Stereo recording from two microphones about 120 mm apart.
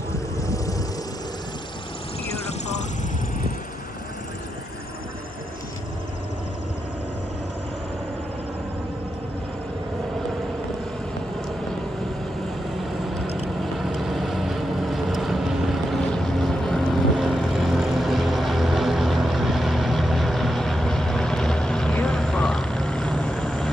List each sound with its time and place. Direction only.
0.4 s vehicle: 30° left (ahead or behind)
13.6 s vehicle: centre (ahead or behind)